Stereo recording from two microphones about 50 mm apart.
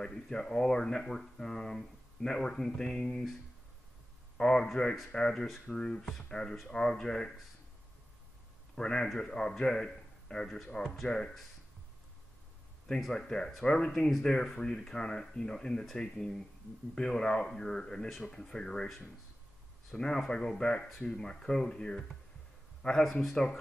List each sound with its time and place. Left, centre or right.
0.0 s speech: centre
4.4 s speech: centre
8.7 s speech: centre
13.1 s speech: centre
20.0 s a man's voice: centre